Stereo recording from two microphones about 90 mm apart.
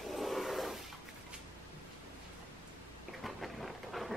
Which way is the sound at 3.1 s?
Centre (ahead or behind).